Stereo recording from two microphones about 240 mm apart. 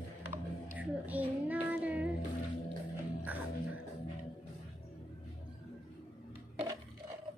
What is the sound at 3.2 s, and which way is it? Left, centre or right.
Music, centre.